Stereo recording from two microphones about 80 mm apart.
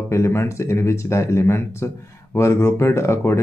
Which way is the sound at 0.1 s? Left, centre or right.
Left.